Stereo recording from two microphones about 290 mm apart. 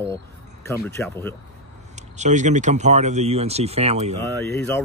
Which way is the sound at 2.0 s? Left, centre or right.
Right.